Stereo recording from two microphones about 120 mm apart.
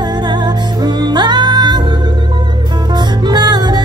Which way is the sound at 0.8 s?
35° right (ahead or behind).